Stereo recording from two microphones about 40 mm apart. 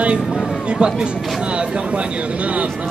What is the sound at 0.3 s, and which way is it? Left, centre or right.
Speech, right.